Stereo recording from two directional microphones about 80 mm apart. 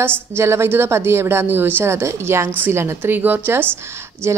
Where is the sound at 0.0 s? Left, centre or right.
Right.